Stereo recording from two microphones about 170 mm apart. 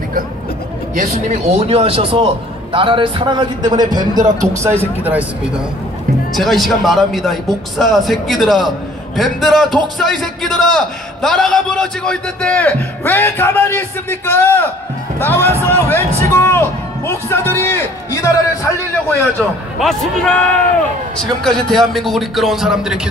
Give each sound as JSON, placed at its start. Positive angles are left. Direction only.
{"t": 0.9, "sound": "a man's voice", "side_deg": -40}
{"t": 4.6, "sound": "speech", "side_deg": -10}
{"t": 6.3, "sound": "a man's voice", "side_deg": 0}
{"t": 16.3, "sound": "music", "side_deg": 15}
{"t": 17.1, "sound": "a man's voice", "side_deg": 15}
{"t": 19.3, "sound": "speech", "side_deg": 0}